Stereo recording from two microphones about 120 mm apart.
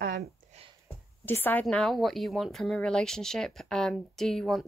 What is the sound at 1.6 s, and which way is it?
Speech, 5° left (ahead or behind).